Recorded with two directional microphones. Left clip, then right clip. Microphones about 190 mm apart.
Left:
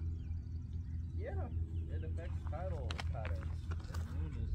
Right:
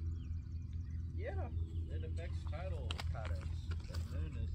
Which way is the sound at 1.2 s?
25° left (ahead or behind).